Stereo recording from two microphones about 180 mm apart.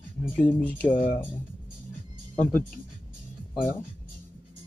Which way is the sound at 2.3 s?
10° left (ahead or behind).